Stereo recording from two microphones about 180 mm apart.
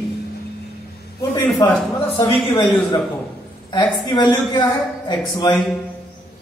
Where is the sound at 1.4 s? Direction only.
25° left (ahead or behind).